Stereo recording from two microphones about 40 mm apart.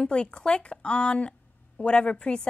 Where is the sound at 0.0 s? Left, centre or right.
Left.